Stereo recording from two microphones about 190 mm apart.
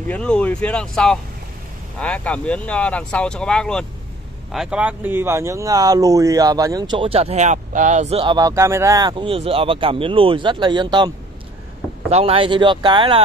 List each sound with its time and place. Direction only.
0.1 s speech: 5° left (ahead or behind); by 13.2 s 25° right (ahead or behind)